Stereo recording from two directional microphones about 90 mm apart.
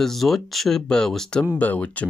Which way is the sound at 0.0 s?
Centre (ahead or behind).